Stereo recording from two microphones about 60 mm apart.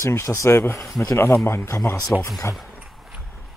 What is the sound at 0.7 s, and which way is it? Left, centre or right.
Speech, left.